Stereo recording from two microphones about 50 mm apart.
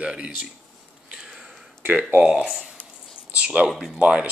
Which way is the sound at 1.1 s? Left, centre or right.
Centre.